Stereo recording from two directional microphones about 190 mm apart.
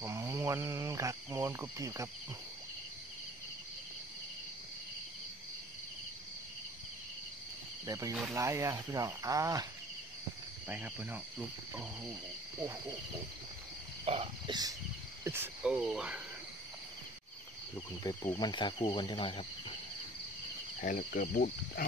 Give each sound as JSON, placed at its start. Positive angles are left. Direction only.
{"t": 0.0, "sound": "speech", "side_deg": -15}
{"t": 7.8, "sound": "speech", "side_deg": -20}
{"t": 8.1, "sound": "speech", "side_deg": -10}
{"t": 10.7, "sound": "speech", "side_deg": -10}
{"t": 14.0, "sound": "frog", "side_deg": -30}
{"t": 15.2, "sound": "cricket", "side_deg": -10}
{"t": 17.7, "sound": "speech", "side_deg": 15}
{"t": 20.8, "sound": "speech", "side_deg": 45}